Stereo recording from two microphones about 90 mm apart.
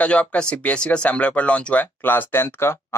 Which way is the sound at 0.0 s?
15° left (ahead or behind).